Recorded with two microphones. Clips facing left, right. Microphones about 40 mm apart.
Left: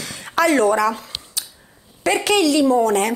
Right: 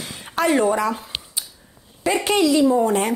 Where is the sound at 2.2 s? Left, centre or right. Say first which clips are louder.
Left 1 dB; left.